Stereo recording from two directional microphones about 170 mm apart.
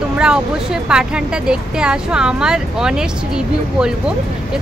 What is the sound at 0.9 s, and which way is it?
Speech, 5° right (ahead or behind).